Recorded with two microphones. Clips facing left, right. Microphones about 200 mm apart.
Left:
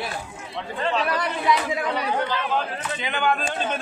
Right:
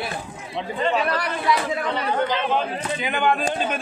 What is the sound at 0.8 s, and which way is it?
Speech, centre (ahead or behind).